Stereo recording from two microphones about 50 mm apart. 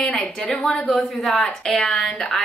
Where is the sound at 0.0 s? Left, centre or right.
Centre.